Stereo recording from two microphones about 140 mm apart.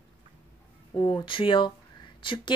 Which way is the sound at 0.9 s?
35° left (ahead or behind).